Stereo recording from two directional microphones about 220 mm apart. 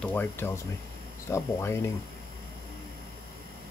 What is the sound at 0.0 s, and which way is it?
Speech, 10° left (ahead or behind).